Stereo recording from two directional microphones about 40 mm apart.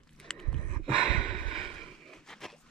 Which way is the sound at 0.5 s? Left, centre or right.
Left.